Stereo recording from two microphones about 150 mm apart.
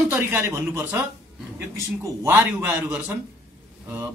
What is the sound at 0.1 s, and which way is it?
Speech, 15° right (ahead or behind).